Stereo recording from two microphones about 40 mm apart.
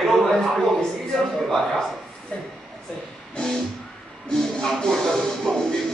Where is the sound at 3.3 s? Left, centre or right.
Centre.